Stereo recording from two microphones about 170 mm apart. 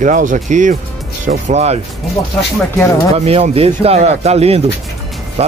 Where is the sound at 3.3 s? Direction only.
35° right (ahead or behind).